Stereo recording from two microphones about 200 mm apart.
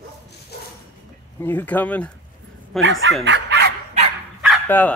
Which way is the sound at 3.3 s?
60° right (ahead or behind).